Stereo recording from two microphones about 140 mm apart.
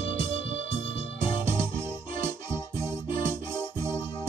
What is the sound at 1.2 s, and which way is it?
Music, 20° right (ahead or behind).